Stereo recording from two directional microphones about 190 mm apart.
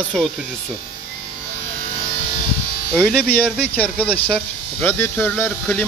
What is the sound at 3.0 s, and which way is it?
Speech, 5° left (ahead or behind).